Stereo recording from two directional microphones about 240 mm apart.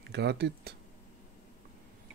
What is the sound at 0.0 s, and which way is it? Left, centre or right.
Speech, right.